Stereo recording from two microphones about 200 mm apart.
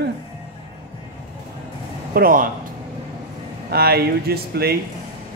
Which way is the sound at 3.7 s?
50° right (ahead or behind).